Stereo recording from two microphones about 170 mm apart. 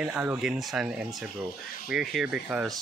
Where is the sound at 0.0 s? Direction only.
10° right (ahead or behind).